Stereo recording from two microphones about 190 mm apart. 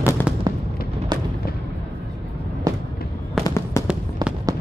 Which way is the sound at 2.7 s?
20° right (ahead or behind).